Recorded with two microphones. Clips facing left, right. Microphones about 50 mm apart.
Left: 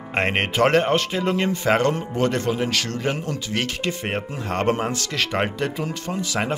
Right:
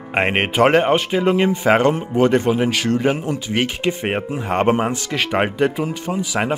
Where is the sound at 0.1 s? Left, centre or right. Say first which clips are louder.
Right 4 dB; centre.